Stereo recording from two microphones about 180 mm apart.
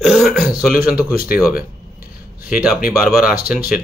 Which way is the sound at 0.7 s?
55° left (ahead or behind).